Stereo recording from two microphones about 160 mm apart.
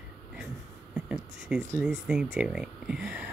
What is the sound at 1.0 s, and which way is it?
Speech, 5° right (ahead or behind).